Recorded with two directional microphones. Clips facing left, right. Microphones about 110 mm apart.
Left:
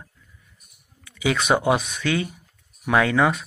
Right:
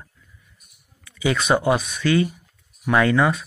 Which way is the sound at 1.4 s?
10° left (ahead or behind).